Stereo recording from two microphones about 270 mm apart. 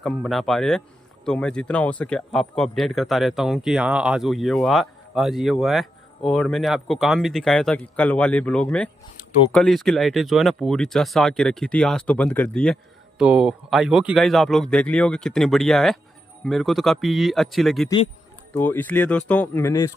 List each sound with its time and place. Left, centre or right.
0.0 s speech: centre
17.8 s a sound: left
18.6 s speech: centre